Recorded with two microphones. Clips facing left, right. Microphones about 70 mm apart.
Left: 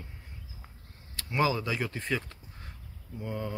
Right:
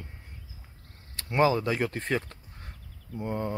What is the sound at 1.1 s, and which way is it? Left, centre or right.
Speech, right.